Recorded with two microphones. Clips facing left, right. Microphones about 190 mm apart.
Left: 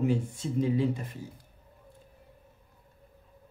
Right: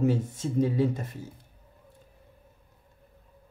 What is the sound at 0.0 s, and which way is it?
Speech, 45° right (ahead or behind).